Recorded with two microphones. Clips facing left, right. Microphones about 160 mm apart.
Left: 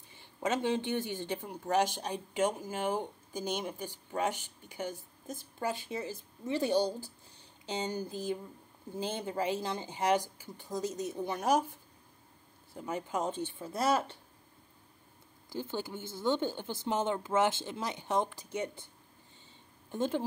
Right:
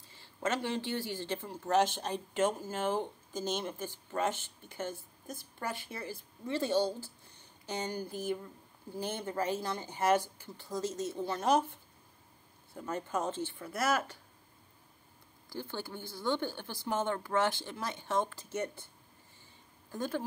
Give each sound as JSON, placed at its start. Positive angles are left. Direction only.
{"t": 0.1, "sound": "speech", "side_deg": 15}
{"t": 13.7, "sound": "speech", "side_deg": 30}
{"t": 15.5, "sound": "speech", "side_deg": 20}
{"t": 19.9, "sound": "speech", "side_deg": 20}